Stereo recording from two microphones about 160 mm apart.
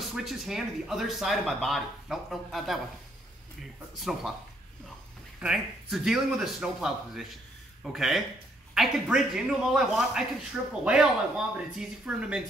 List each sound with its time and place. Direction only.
0.0 s speech: centre (ahead or behind)
4.0 s speech: centre (ahead or behind)
5.4 s speech: 5° right (ahead or behind)